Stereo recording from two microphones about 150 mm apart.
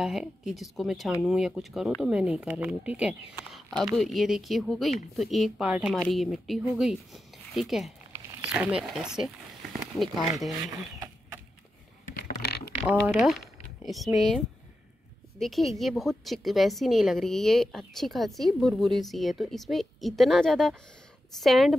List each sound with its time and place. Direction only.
0.0 s a woman's voice: 5° right (ahead or behind)
12.1 s mechanisms: 90° left
12.8 s a woman's voice: 5° right (ahead or behind)